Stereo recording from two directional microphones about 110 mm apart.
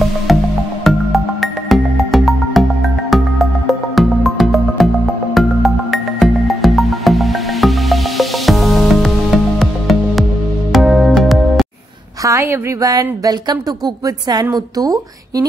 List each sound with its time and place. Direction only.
0.3 s music: centre (ahead or behind)
12.2 s a woman's voice: 25° right (ahead or behind)